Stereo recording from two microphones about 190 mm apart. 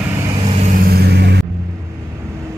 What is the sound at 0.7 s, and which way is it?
Vehicle, 55° right (ahead or behind).